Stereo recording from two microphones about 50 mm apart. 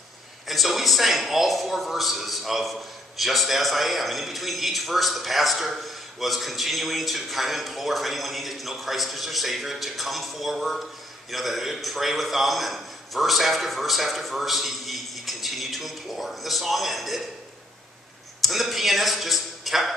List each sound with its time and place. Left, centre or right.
0.5 s a man's voice: centre
18.4 s a man's voice: centre